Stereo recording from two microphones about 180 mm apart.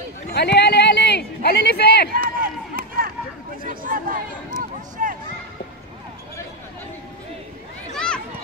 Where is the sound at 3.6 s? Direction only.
50° right (ahead or behind).